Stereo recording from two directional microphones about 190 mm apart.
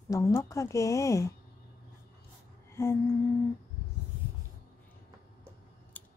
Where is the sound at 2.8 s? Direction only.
15° left (ahead or behind).